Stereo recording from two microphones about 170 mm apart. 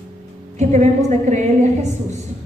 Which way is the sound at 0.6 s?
45° right (ahead or behind).